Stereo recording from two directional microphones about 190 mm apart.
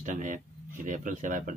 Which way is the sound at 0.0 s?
45° right (ahead or behind).